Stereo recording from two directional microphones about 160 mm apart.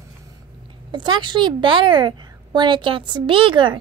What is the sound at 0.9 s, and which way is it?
A woman's voice, 30° right (ahead or behind).